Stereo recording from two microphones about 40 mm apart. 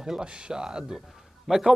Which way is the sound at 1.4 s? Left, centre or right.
Centre.